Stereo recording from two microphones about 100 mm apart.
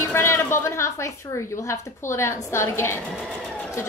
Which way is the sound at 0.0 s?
25° left (ahead or behind).